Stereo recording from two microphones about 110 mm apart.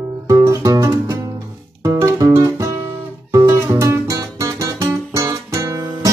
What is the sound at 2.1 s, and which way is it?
Music, 25° right (ahead or behind).